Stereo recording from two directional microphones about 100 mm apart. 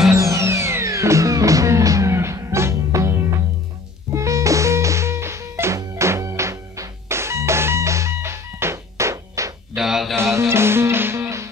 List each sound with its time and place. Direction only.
0.1 s music: 30° right (ahead or behind)
9.8 s a sound: 5° right (ahead or behind)
10.5 s music: 25° right (ahead or behind)